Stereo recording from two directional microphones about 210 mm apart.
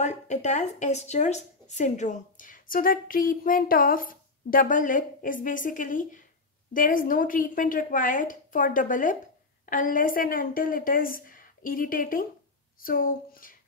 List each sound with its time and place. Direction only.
0.0 s speech: 35° left (ahead or behind)